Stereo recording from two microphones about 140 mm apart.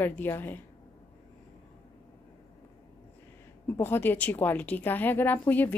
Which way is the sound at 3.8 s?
15° left (ahead or behind).